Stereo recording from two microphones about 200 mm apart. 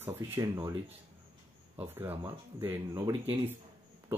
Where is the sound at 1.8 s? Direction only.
10° right (ahead or behind).